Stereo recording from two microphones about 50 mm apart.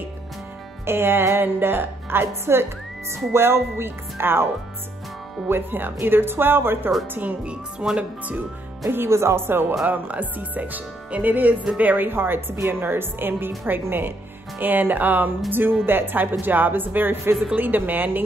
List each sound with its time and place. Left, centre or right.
0.8 s a woman's voice: right
5.5 s a woman's voice: right
7.8 s speech: right
8.8 s a woman's voice: right
9.8 s a woman's voice: right